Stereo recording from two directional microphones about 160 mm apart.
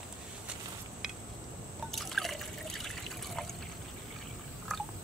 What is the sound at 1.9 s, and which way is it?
Liquid, centre (ahead or behind).